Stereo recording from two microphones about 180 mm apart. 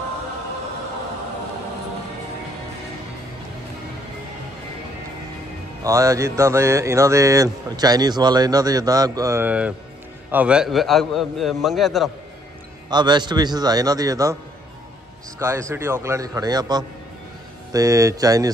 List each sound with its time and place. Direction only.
5.9 s mantra: 15° right (ahead or behind)
10.3 s a man's voice: 5° right (ahead or behind)
12.9 s a man's voice: 25° right (ahead or behind)
15.3 s a man's voice: 15° right (ahead or behind)